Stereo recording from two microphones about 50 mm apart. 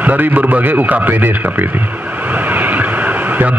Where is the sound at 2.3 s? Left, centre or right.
Right.